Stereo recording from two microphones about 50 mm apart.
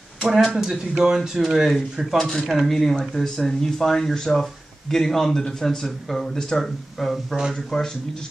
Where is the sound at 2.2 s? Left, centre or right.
Centre.